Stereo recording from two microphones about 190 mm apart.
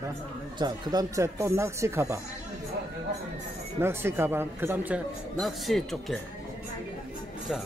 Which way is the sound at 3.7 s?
10° right (ahead or behind).